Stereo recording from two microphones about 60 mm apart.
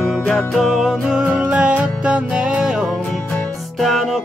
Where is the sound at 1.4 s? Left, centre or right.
Right.